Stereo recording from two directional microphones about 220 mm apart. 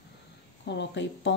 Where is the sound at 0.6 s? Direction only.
50° left (ahead or behind).